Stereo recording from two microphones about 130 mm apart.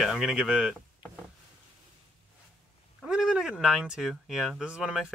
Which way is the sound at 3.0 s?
5° right (ahead or behind).